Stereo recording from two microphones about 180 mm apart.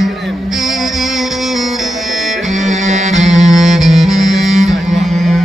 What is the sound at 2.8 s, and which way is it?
Music, 40° right (ahead or behind).